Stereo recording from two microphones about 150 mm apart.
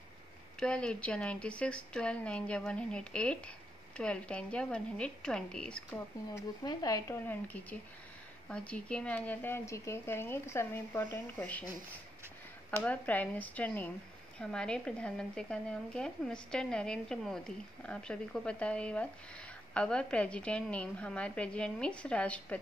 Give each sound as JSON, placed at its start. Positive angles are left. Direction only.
{"t": 0.6, "sound": "a woman's voice", "side_deg": 5}
{"t": 6.3, "sound": "speech", "side_deg": 25}
{"t": 7.2, "sound": "a woman's voice", "side_deg": 10}
{"t": 12.8, "sound": "a woman's voice", "side_deg": 10}